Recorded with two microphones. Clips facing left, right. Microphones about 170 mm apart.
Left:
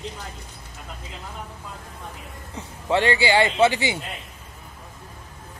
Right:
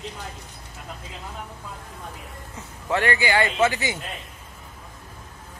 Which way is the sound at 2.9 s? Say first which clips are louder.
Left 3 dB; 25° left (ahead or behind).